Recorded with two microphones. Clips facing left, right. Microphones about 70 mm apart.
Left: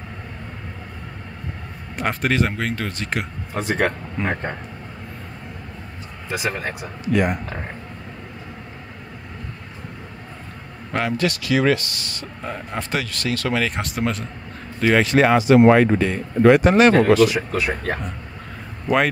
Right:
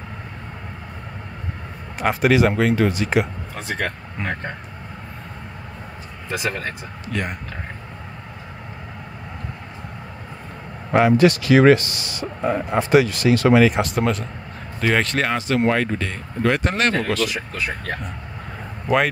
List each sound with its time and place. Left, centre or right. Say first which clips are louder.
2.0 s speech: right 4 dB; centre
6.3 s speech: even; centre
10.9 s speech: right 7 dB; centre
11.4 s speech: right 4 dB; right
11.9 s speech: right 4 dB; centre
13.7 s speech: right 4 dB; centre